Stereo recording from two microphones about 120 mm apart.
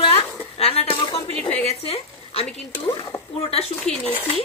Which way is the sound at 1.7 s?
55° left (ahead or behind).